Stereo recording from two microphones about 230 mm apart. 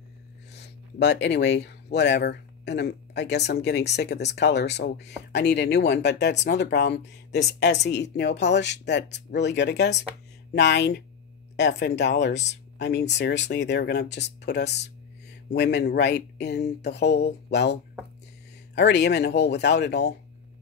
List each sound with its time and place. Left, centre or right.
0.5 s speech: left
12.0 s speech: left
18.8 s speech: left